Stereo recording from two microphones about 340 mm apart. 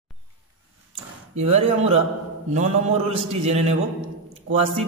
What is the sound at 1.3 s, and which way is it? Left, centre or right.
A man's voice, centre.